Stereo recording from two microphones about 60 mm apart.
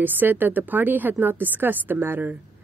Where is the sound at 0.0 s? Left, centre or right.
Right.